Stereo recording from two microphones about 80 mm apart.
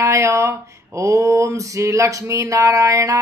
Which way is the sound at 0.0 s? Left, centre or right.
Right.